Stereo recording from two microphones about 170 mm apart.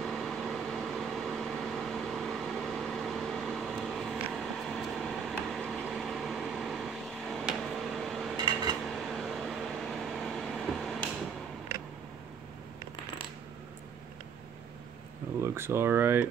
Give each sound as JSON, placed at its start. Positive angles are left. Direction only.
{"t": 0.0, "sound": "vehicle", "side_deg": 0}
{"t": 15.4, "sound": "speech", "side_deg": -15}